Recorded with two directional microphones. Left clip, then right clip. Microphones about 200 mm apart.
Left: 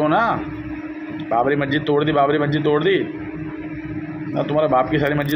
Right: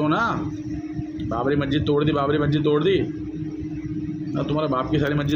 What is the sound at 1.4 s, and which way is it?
A man's voice, 15° right (ahead or behind).